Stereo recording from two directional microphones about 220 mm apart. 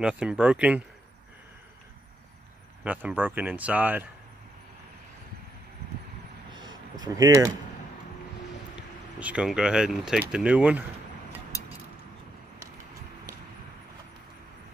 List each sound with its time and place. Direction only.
0.0 s speech: 5° right (ahead or behind)
2.8 s speech: 5° right (ahead or behind)
6.5 s a sound: 15° right (ahead or behind)
9.2 s speech: 5° right (ahead or behind)